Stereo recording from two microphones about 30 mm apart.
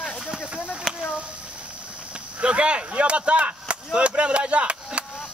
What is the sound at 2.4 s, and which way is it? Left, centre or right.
Speech, right.